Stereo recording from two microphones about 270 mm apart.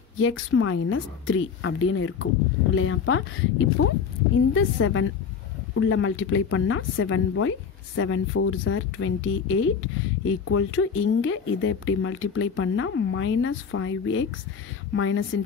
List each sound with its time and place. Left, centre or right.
0.2 s speech: left